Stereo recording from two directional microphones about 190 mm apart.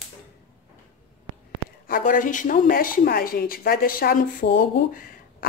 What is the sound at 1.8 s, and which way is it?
A woman's voice, 45° left (ahead or behind).